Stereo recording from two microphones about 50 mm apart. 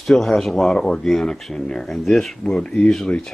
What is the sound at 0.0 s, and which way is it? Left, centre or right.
Speech, centre.